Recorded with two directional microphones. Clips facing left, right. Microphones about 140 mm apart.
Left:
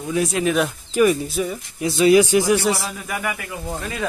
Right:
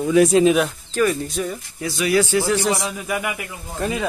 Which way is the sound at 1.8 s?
20° left (ahead or behind).